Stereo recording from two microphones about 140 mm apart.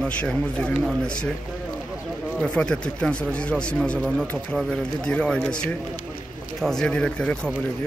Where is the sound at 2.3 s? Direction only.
5° left (ahead or behind).